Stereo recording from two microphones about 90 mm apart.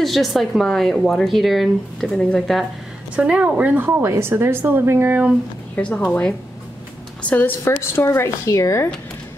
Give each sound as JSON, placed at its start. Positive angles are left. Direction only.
{"t": 0.0, "sound": "speech", "side_deg": 0}
{"t": 3.2, "sound": "a woman's voice", "side_deg": -15}
{"t": 5.8, "sound": "a woman's voice", "side_deg": 15}